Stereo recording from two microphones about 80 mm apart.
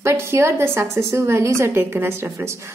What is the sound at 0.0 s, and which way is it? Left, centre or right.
A woman's voice, right.